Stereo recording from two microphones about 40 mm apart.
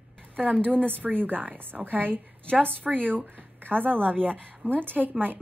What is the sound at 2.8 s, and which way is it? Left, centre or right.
Speech, right.